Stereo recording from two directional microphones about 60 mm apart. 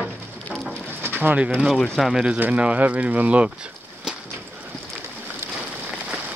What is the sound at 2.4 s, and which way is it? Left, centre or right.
Speech, right.